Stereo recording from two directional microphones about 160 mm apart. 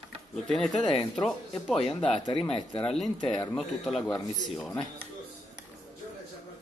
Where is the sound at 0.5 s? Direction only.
Centre (ahead or behind).